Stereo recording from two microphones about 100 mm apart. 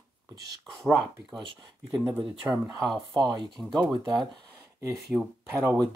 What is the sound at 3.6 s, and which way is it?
Speech, centre (ahead or behind).